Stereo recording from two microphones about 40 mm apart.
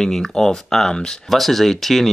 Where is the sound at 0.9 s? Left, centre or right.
Centre.